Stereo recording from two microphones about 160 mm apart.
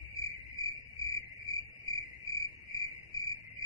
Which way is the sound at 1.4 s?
20° left (ahead or behind).